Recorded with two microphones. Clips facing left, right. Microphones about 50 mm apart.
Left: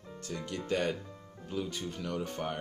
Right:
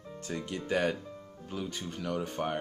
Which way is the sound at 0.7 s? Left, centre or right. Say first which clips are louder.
Right 2 dB; centre.